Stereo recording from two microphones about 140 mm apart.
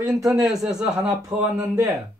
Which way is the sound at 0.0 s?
25° right (ahead or behind).